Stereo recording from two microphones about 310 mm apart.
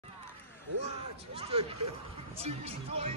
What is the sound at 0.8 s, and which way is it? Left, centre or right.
Speech, centre.